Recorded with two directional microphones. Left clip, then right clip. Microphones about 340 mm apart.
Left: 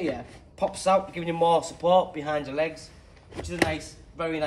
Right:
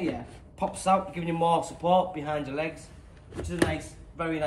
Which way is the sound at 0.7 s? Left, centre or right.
Centre.